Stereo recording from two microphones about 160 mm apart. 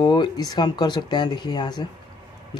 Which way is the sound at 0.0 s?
30° left (ahead or behind).